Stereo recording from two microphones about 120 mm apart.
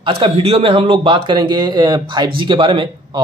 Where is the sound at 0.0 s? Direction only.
50° right (ahead or behind).